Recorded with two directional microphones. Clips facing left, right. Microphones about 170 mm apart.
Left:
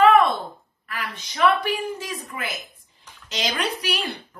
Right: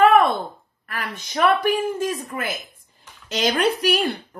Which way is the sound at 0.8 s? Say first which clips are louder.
Right 2 dB; 50° right (ahead or behind).